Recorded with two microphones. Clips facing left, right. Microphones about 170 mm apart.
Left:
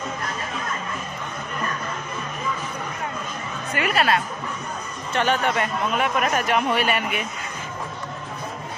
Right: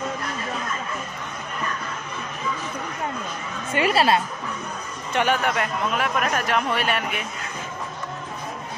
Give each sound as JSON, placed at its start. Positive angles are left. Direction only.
{"t": 3.7, "sound": "a woman's voice", "side_deg": -30}
{"t": 5.1, "sound": "speech", "side_deg": -10}